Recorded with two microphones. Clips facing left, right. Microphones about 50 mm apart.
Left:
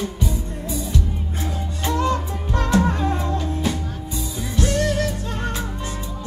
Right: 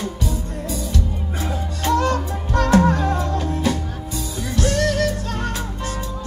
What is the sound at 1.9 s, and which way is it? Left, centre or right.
Music, right.